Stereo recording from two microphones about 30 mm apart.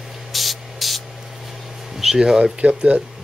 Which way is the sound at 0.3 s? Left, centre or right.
Centre.